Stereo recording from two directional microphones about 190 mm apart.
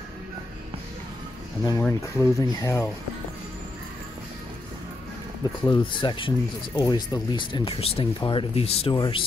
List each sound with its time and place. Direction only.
1.6 s speech: 15° left (ahead or behind)
5.7 s speech: 25° left (ahead or behind)